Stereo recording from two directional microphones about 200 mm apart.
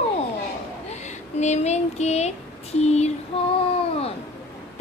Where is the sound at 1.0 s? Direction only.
35° left (ahead or behind).